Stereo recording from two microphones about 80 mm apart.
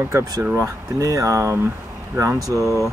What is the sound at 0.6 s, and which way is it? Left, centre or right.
Speech, right.